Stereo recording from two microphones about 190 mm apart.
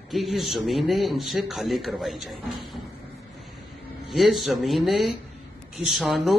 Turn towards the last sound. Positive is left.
turn(degrees=0)  # may be behind; listen again after turning